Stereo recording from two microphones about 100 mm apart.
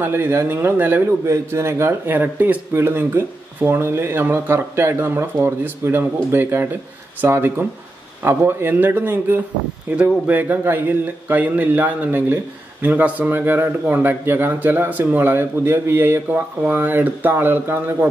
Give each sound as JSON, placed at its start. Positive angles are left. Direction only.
{"t": 0.0, "sound": "a man's voice", "side_deg": -25}